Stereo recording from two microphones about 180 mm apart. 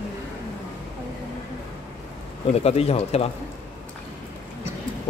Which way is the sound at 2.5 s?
35° left (ahead or behind).